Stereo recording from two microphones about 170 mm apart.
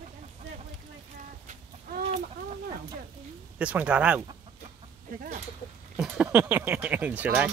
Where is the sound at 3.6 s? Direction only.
5° right (ahead or behind).